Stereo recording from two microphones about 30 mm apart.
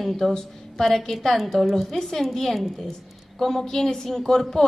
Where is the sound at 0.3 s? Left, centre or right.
Centre.